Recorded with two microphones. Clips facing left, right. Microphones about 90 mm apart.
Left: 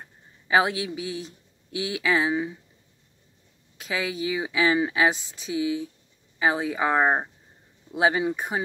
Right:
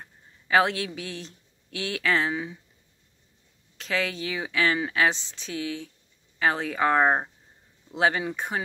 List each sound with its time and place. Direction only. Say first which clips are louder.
0.5 s speech: even; 15° left (ahead or behind)
3.7 s speech: even; 10° left (ahead or behind)